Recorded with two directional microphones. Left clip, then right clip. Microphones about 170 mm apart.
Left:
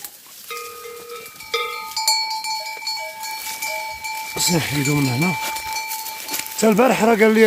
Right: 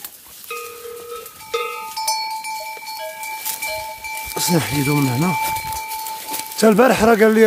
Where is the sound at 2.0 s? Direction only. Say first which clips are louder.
Left 2 dB; 30° left (ahead or behind).